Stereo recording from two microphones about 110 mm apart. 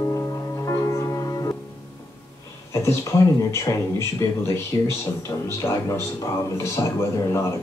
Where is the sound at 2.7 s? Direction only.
25° left (ahead or behind).